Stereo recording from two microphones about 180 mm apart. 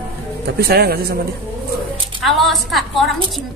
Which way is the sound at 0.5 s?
60° right (ahead or behind).